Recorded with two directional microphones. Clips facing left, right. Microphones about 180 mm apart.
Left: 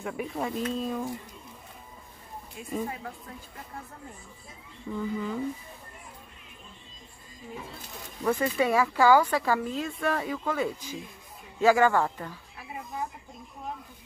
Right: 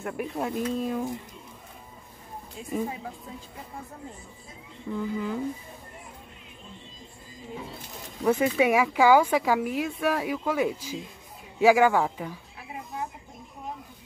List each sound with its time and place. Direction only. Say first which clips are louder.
0.0 s speech: right 1 dB; 5° right (ahead or behind)
2.7 s speech: right 2 dB; 10° right (ahead or behind)
4.9 s speech: right 1 dB; centre (ahead or behind)
8.4 s speech: right 2 dB; 15° right (ahead or behind)